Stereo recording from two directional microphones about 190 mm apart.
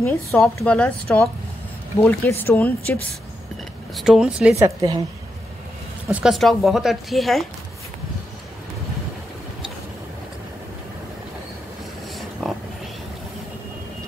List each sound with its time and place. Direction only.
0.0 s a woman's voice: 15° left (ahead or behind)
3.9 s speech: 5° right (ahead or behind)
4.6 s a woman's voice: 20° right (ahead or behind)
6.0 s speech: centre (ahead or behind)
12.4 s a sound: centre (ahead or behind)